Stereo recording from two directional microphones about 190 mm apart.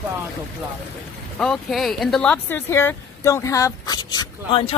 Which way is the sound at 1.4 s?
Centre (ahead or behind).